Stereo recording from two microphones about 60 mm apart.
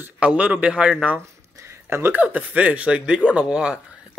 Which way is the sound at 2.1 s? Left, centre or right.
Right.